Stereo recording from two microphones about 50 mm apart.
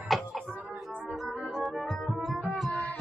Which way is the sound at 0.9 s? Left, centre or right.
Centre.